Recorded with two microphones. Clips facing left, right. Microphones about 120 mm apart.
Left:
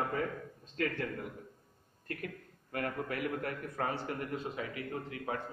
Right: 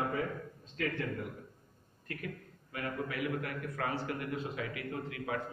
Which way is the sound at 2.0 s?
45° left (ahead or behind).